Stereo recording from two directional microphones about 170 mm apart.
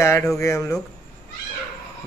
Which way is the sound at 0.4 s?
15° left (ahead or behind).